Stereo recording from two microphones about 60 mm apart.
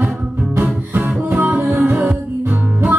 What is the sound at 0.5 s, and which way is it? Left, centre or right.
Music, right.